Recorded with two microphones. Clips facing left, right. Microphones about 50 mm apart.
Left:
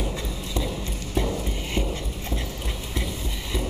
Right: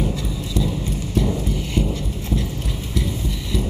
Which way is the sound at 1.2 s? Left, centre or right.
Left.